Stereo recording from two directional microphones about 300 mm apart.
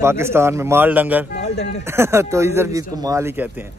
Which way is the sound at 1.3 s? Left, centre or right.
Left.